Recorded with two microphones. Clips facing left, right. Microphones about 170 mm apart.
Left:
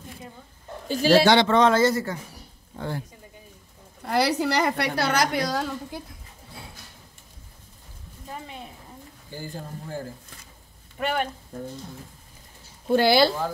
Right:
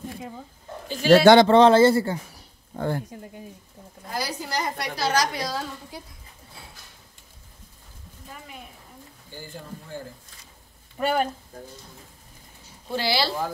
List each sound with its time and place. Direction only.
0.8 s a man's voice: 40° left (ahead or behind)
1.2 s speech: 45° right (ahead or behind)
1.5 s speech: 30° right (ahead or behind)
2.7 s speech: 50° right (ahead or behind)
4.0 s a woman's voice: 70° left (ahead or behind)
11.0 s speech: 35° right (ahead or behind)
12.9 s speech: 50° left (ahead or behind)